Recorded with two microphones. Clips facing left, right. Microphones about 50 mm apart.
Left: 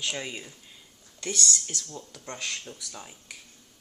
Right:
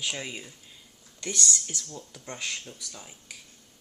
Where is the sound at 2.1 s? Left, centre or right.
Centre.